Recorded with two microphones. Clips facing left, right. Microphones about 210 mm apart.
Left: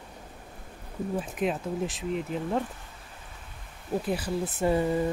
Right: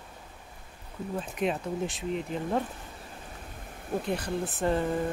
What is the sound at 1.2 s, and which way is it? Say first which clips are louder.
Speech: right 1 dB; centre (ahead or behind).